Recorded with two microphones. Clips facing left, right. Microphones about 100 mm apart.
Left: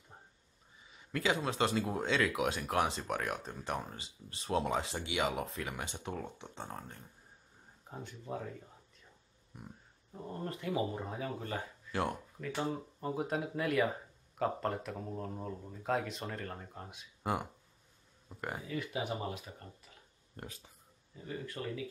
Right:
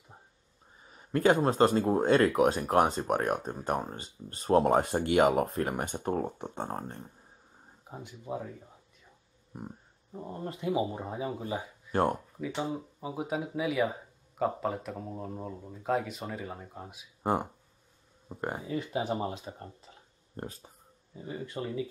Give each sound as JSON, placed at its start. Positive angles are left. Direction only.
{"t": 0.8, "sound": "speech", "side_deg": -40}
{"t": 7.9, "sound": "speech", "side_deg": -15}
{"t": 9.5, "sound": "a sound", "side_deg": -40}
{"t": 10.1, "sound": "speech", "side_deg": -20}
{"t": 11.9, "sound": "speech", "side_deg": -40}
{"t": 12.4, "sound": "speech", "side_deg": -10}
{"t": 17.2, "sound": "speech", "side_deg": -35}
{"t": 21.2, "sound": "speech", "side_deg": -20}